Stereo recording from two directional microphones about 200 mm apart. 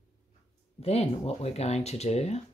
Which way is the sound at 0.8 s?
30° left (ahead or behind).